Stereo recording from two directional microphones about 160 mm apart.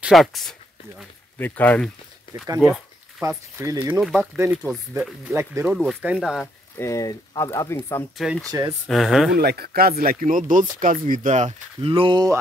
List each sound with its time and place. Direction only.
0.0 s speech: centre (ahead or behind)
2.4 s speech: 20° right (ahead or behind)
3.9 s speech: 5° right (ahead or behind)
6.4 s speech: 20° left (ahead or behind)
8.2 s speech: centre (ahead or behind)
8.5 s speech: 20° right (ahead or behind)
8.8 s speech: centre (ahead or behind)
9.4 s speech: 75° right (ahead or behind); by 12.4 s 25° right (ahead or behind)